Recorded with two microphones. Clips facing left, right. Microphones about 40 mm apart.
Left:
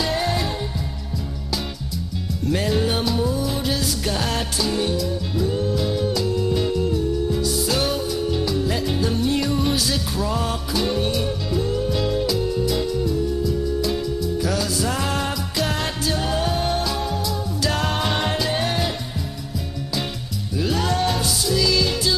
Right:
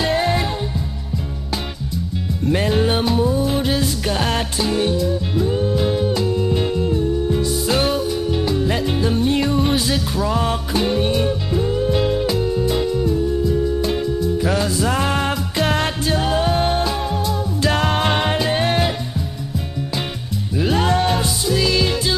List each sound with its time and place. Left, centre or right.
0.0 s music: right
2.4 s music: right
16.2 s music: right
20.5 s music: right